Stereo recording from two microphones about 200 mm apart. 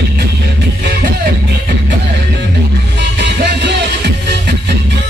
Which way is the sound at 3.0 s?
60° right (ahead or behind).